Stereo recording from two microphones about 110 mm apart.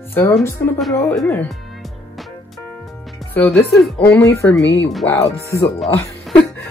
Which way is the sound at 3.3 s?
15° left (ahead or behind).